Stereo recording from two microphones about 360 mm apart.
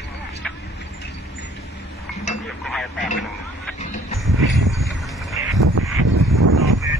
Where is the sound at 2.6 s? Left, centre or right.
Centre.